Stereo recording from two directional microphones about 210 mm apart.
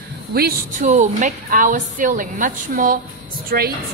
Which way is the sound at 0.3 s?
45° right (ahead or behind).